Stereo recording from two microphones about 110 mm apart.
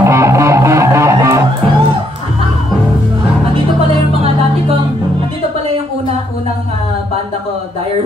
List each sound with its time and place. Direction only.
0.0 s music: 25° right (ahead or behind)